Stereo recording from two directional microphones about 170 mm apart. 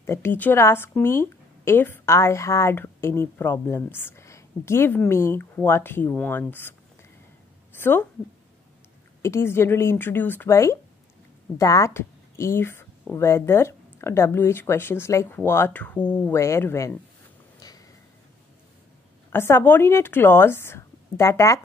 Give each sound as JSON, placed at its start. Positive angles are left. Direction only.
{"t": 0.0, "sound": "a woman's voice", "side_deg": 15}
{"t": 7.7, "sound": "a woman's voice", "side_deg": 10}
{"t": 9.2, "sound": "a woman's voice", "side_deg": 15}
{"t": 17.6, "sound": "a sound", "side_deg": 20}
{"t": 19.3, "sound": "a woman's voice", "side_deg": 15}